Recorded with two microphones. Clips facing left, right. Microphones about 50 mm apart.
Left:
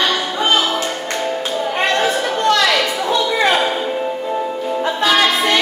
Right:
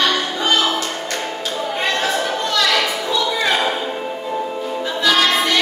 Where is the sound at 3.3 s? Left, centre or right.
Left.